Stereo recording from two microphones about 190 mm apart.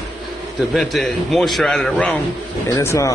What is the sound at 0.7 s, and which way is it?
Speech, centre (ahead or behind).